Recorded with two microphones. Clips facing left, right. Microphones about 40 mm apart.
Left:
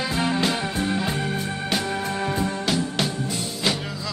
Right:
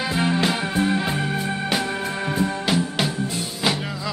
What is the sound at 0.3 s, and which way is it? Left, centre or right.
Music, centre.